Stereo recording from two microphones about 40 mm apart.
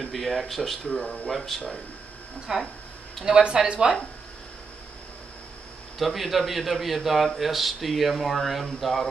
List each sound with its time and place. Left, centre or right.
0.0 s a man's voice: centre
0.9 s speech: centre
1.3 s speech: centre
2.5 s speech: centre
5.9 s a man's voice: centre